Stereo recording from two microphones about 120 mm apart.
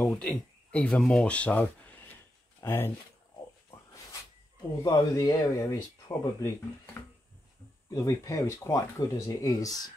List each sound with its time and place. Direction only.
0.0 s speech: 10° left (ahead or behind)
3.7 s a sound: 20° left (ahead or behind)
4.8 s speech: 30° left (ahead or behind)
7.9 s speech: 30° left (ahead or behind)